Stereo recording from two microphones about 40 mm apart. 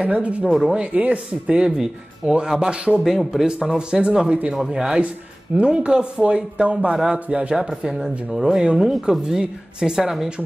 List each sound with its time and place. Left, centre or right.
0.0 s speech: right
0.5 s speech: centre
0.9 s speech: right
1.6 s a man's voice: right
3.0 s speech: centre
3.7 s a man's voice: right
5.6 s a man's voice: right
7.9 s a man's voice: centre